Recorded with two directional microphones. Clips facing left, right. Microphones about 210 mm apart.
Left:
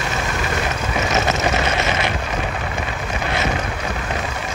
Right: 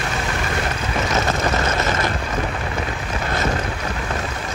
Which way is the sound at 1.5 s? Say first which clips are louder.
Even; 15° left (ahead or behind).